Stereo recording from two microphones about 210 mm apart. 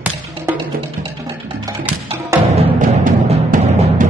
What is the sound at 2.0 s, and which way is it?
Music, 25° right (ahead or behind).